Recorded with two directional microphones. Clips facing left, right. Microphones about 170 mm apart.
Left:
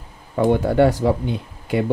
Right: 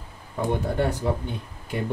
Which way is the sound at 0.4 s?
90° left.